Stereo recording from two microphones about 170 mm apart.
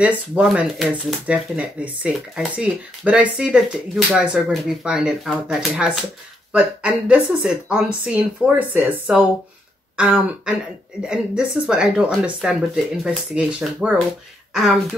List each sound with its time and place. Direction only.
0.4 s speech: 5° right (ahead or behind)